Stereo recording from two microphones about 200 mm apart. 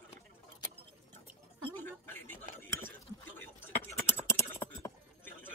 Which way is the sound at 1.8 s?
10° left (ahead or behind).